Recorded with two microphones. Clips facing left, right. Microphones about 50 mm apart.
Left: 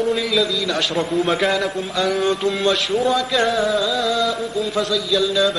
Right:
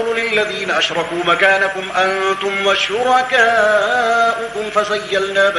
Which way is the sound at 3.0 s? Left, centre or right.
Right.